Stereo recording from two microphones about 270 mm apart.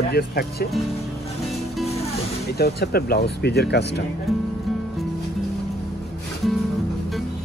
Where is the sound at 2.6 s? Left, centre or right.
Left.